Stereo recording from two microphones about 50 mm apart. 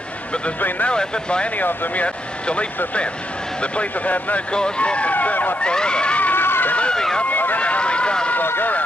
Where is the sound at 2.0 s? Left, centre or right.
Left.